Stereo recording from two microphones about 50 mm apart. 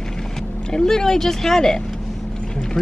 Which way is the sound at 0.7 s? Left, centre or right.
Centre.